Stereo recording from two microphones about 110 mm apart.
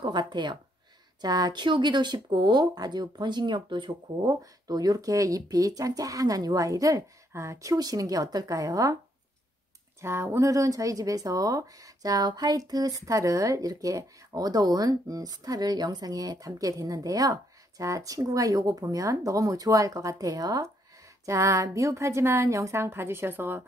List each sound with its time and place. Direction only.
0.0 s speech: 40° right (ahead or behind)
4.3 s speech: 35° right (ahead or behind)
10.0 s a woman's voice: 25° right (ahead or behind)